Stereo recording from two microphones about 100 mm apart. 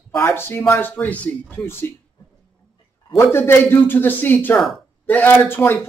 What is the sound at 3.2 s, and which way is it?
Speech, 25° left (ahead or behind).